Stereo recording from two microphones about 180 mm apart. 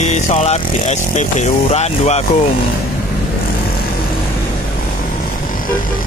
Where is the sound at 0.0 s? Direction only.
35° left (ahead or behind).